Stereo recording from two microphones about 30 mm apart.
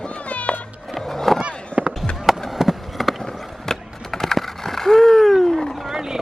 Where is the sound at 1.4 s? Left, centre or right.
Right.